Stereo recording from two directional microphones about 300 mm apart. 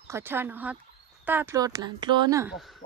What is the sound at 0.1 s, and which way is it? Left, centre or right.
Speech, centre.